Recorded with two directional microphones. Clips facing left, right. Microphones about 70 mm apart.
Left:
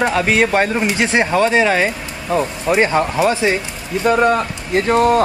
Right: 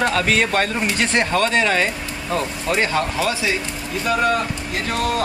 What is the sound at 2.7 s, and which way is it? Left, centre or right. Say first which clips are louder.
Speech: left 6 dB; left.